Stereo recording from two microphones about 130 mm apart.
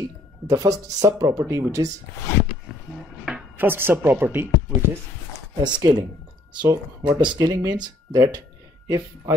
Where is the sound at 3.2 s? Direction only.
10° right (ahead or behind).